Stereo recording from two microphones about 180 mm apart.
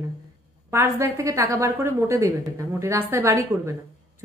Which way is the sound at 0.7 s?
15° right (ahead or behind).